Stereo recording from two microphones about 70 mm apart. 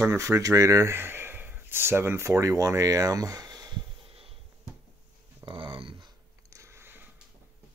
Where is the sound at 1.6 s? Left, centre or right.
Right.